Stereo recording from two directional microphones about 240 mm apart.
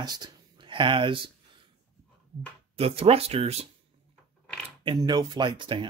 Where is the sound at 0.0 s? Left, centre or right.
Centre.